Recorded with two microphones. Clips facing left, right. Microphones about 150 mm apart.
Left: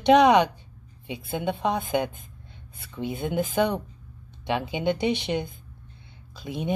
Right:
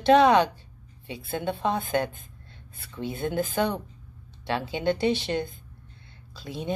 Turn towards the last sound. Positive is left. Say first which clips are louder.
# left 3 dB
turn(degrees=20)  # may be behind; listen again after turning